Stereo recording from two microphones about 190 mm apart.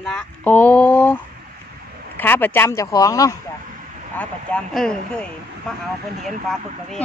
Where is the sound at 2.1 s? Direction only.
10° left (ahead or behind).